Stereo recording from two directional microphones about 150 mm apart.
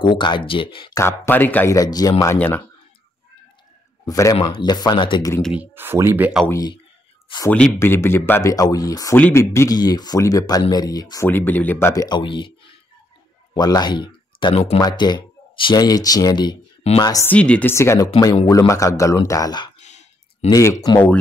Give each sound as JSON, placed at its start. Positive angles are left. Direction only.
{"t": 0.0, "sound": "speech", "side_deg": 30}
{"t": 0.9, "sound": "speech", "side_deg": 15}
{"t": 4.0, "sound": "a man's voice", "side_deg": 25}
{"t": 5.4, "sound": "speech", "side_deg": -10}
{"t": 6.5, "sound": "speech", "side_deg": 25}
{"t": 7.5, "sound": "speech", "side_deg": 10}
{"t": 11.2, "sound": "speech", "side_deg": 15}
{"t": 13.6, "sound": "speech", "side_deg": 25}
{"t": 14.8, "sound": "speech", "side_deg": 30}
{"t": 17.3, "sound": "speech", "side_deg": 10}
{"t": 19.8, "sound": "a sound", "side_deg": 50}
{"t": 20.4, "sound": "speech", "side_deg": 20}